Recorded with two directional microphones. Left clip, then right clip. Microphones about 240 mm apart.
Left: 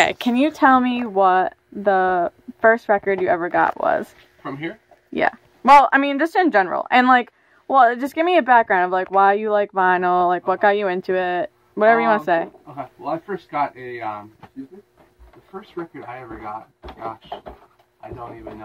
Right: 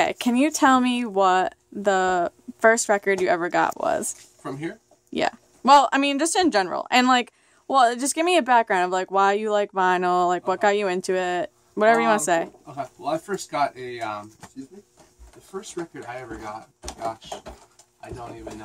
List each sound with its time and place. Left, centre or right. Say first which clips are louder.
0.0 s a woman's voice: left 4 dB; centre
0.6 s a woman's voice: left 4 dB; centre
4.4 s speech: left 4 dB; right
5.1 s a woman's voice: left 4 dB; centre
12.6 s speech: left 1 dB; right
15.7 s speech: left 3 dB; right